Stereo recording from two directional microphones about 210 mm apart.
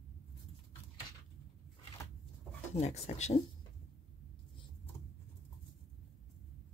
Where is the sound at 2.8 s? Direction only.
30° left (ahead or behind).